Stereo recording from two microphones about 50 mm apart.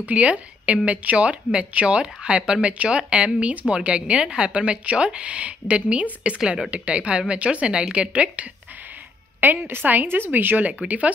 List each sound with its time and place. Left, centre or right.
0.0 s a woman's voice: right
9.4 s speech: right